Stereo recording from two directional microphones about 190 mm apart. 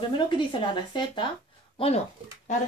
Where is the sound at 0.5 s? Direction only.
25° left (ahead or behind).